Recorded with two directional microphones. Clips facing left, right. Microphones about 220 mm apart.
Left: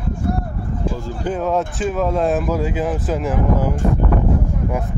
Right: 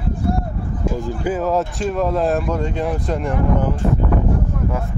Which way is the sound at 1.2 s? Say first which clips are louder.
Even; 5° right (ahead or behind).